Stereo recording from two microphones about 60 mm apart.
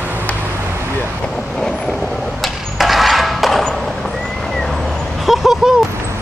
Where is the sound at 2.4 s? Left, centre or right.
Centre.